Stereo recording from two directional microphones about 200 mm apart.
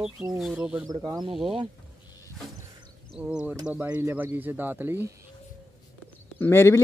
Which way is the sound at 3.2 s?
5° right (ahead or behind).